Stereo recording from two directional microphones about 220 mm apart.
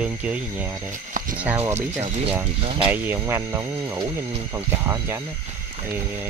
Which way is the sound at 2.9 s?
10° right (ahead or behind).